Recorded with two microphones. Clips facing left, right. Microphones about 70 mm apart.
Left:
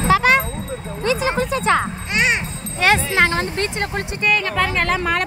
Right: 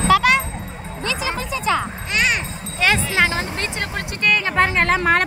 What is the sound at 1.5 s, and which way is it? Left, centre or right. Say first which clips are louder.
Music: left 1 dB; left.